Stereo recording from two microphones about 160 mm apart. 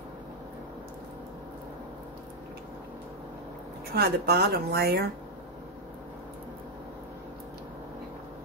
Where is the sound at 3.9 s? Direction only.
80° right.